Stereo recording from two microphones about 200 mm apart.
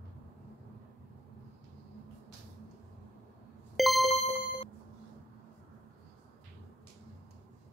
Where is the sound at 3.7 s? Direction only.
Centre (ahead or behind).